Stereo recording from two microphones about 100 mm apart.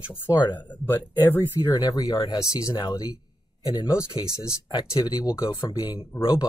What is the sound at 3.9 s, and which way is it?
Speech, 30° left (ahead or behind).